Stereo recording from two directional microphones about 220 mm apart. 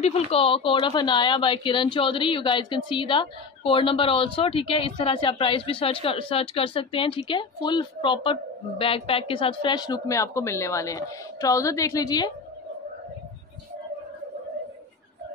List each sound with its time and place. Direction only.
0.0 s speech: 30° left (ahead or behind)